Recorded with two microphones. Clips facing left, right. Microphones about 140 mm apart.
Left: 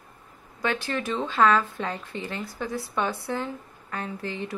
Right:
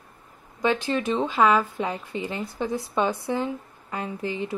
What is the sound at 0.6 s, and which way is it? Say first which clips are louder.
Speech: right 4 dB; 20° right (ahead or behind).